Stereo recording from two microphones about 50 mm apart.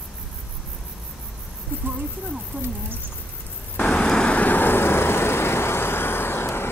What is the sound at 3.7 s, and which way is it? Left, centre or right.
Vehicle, left.